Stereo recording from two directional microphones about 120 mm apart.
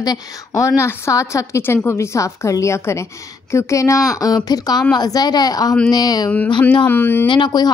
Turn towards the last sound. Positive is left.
turn(degrees=35)  # may be behind; listen again after turning